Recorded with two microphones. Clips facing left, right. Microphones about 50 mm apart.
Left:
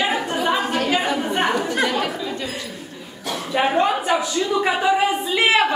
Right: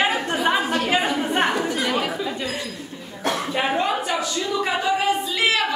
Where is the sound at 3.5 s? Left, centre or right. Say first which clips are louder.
Left 6 dB; centre.